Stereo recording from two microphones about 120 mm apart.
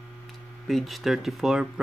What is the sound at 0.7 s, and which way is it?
Speech, centre (ahead or behind).